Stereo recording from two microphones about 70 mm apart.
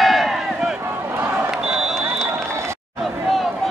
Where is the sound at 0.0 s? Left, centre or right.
Centre.